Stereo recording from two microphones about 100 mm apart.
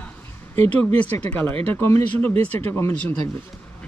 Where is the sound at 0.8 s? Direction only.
20° left (ahead or behind).